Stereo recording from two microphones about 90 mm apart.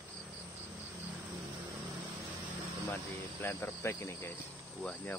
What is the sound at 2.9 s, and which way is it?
Speech, 25° left (ahead or behind).